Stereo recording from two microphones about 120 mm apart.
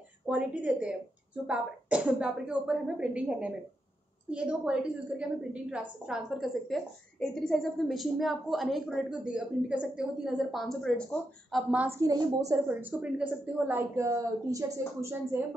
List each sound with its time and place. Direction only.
0.3 s a woman's voice: 10° right (ahead or behind)
12.0 s speech: 30° right (ahead or behind)
12.6 s speech: 15° right (ahead or behind)